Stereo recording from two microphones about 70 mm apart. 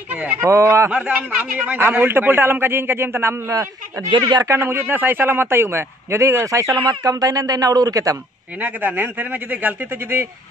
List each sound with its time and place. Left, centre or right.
0.4 s speech: right
0.8 s a man's voice: right
4.2 s a man's voice: right
4.6 s speech: right
8.5 s speech: right